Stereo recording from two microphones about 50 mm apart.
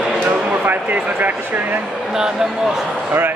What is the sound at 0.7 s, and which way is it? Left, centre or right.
Speech, right.